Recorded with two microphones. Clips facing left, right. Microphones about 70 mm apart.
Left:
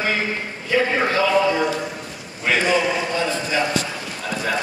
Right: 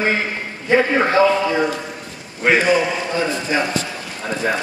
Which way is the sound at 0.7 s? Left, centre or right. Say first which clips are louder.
Right 4 dB; right.